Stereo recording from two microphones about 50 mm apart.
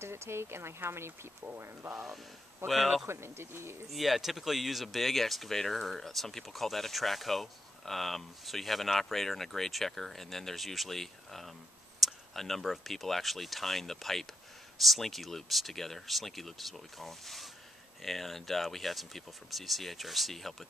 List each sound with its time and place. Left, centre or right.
0.0 s speech: right
2.7 s speech: centre
3.1 s speech: right
3.9 s speech: centre